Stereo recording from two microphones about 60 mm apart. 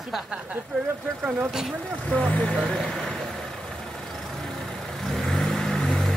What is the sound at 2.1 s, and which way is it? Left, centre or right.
Speech, centre.